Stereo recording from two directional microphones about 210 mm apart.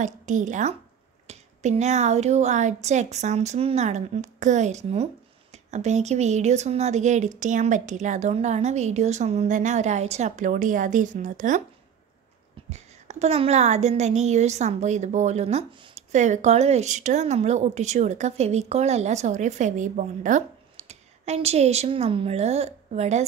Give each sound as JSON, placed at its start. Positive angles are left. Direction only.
{"t": 0.0, "sound": "a woman's voice", "side_deg": -35}
{"t": 12.6, "sound": "a woman's voice", "side_deg": -30}